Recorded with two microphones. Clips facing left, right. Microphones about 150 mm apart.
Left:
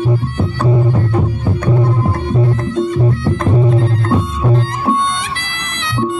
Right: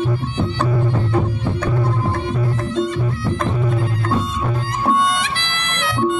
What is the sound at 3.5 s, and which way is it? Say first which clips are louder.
Music: left 7 dB; 25° left (ahead or behind).